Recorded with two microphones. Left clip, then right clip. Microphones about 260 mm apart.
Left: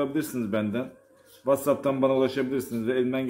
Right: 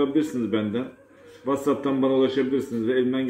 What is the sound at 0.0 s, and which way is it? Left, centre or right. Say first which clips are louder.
A man's voice: right 5 dB; left.